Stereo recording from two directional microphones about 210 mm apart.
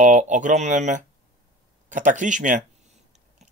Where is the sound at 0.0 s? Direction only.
35° right (ahead or behind).